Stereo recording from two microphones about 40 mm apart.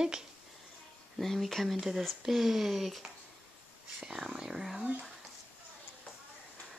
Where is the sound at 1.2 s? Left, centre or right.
Centre.